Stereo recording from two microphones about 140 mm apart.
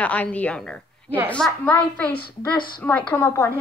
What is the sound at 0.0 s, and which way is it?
A woman's voice, 10° left (ahead or behind).